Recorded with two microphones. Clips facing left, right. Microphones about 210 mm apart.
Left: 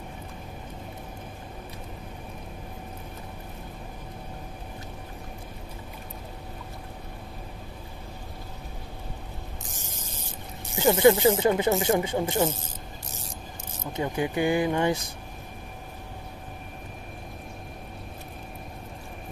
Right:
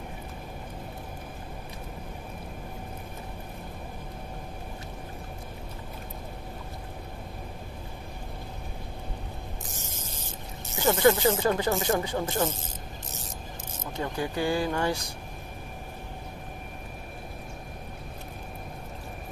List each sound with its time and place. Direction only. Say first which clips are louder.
10.8 s speech: left 3 dB; 20° left (ahead or behind)
13.9 s speech: left 3 dB; 20° left (ahead or behind)